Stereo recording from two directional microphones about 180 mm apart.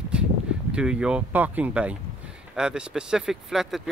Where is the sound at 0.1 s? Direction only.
5° right (ahead or behind).